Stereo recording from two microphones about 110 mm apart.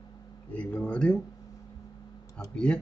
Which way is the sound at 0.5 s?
10° left (ahead or behind).